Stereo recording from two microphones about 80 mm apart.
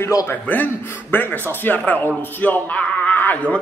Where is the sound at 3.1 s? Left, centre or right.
Left.